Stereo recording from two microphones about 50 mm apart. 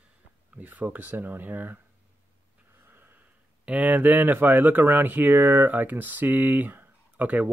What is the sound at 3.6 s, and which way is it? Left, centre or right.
Speech, right.